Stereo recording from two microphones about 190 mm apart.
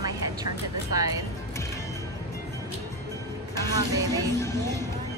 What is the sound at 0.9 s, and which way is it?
Speech, 20° right (ahead or behind).